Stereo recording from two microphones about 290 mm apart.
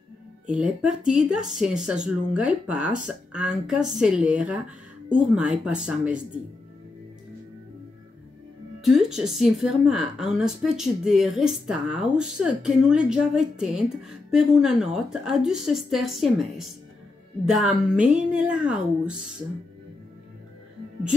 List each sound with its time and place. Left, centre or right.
0.5 s a woman's voice: centre
5.7 s a woman's voice: centre
8.8 s a woman's voice: centre